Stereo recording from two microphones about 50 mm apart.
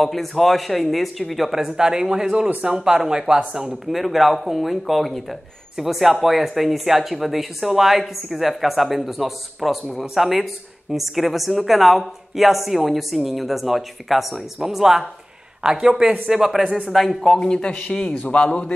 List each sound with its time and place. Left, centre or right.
0.0 s speech: centre
16.6 s speech: right
16.9 s speech: centre
17.4 s a man's voice: centre